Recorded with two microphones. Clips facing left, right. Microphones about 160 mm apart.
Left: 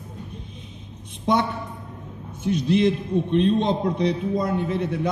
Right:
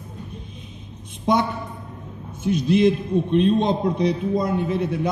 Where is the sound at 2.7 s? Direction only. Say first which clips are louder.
Right 3 dB; 15° right (ahead or behind).